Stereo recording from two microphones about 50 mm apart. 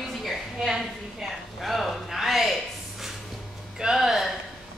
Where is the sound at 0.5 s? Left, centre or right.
Centre.